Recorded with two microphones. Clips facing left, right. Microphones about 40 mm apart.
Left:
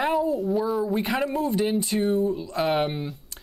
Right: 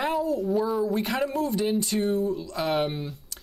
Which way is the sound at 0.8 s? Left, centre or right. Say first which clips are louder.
Left 1 dB; centre.